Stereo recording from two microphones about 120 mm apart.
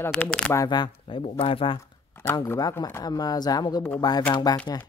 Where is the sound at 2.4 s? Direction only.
20° left (ahead or behind).